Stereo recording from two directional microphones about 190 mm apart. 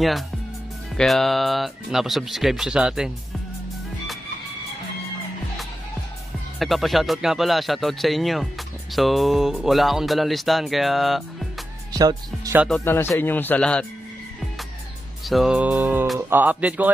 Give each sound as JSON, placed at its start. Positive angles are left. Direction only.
{"t": 0.9, "sound": "speech", "side_deg": 0}
{"t": 6.6, "sound": "speech", "side_deg": 0}
{"t": 11.9, "sound": "speech", "side_deg": -20}
{"t": 12.5, "sound": "speech", "side_deg": 0}
{"t": 12.8, "sound": "speech", "side_deg": 10}
{"t": 15.2, "sound": "music", "side_deg": 0}